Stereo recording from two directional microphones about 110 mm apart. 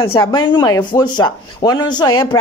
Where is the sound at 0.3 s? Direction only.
45° left (ahead or behind).